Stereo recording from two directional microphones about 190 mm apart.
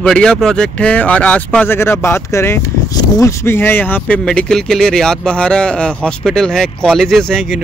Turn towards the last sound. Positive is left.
turn(degrees=0)  # may be behind; listen again after turning